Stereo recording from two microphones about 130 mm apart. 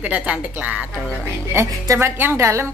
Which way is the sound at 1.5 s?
20° right (ahead or behind).